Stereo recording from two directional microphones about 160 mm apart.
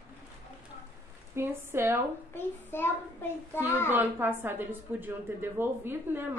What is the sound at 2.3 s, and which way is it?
A child's voice, 15° left (ahead or behind).